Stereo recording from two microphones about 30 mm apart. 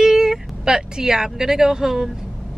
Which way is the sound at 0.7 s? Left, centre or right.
Right.